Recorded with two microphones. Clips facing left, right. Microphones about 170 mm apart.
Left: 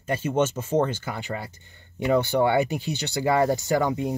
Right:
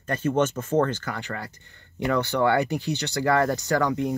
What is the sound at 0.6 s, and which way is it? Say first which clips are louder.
Speech: right 1 dB; 20° left (ahead or behind).